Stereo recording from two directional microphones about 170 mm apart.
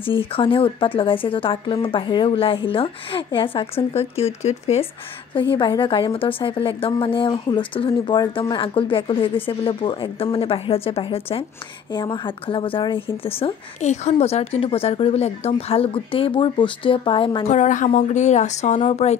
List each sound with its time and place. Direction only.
0.2 s a woman's voice: 30° left (ahead or behind)
5.3 s a woman's voice: 30° left (ahead or behind)
17.5 s a woman's voice: 45° left (ahead or behind)